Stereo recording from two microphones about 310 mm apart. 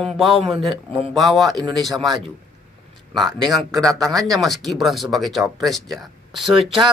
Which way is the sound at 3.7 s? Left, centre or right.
Centre.